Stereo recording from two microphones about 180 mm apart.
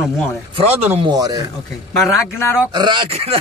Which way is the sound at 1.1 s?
20° right (ahead or behind).